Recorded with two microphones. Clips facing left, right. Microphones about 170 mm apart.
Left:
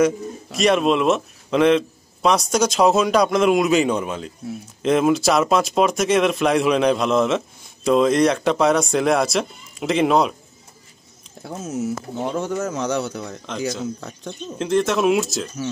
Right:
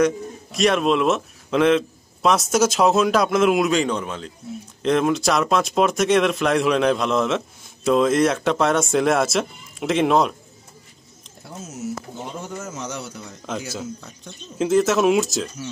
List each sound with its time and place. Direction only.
0.0 s speech: centre (ahead or behind)
12.3 s a man's voice: 75° left (ahead or behind)
13.5 s speech: 5° right (ahead or behind)